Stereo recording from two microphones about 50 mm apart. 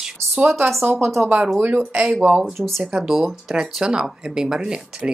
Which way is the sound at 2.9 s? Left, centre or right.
Centre.